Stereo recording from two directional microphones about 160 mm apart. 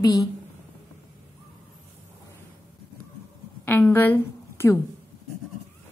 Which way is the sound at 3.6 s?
10° left (ahead or behind).